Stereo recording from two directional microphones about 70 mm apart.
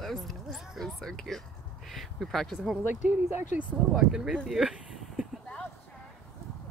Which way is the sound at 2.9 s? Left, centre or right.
Right.